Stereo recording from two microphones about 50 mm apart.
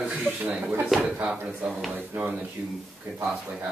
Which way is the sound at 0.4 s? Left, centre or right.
Right.